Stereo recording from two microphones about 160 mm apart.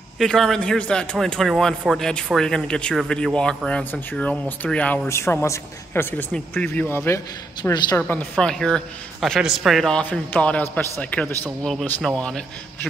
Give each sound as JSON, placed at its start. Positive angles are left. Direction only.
{"t": 0.2, "sound": "a woman's voice", "side_deg": 0}
{"t": 8.1, "sound": "speech", "side_deg": 10}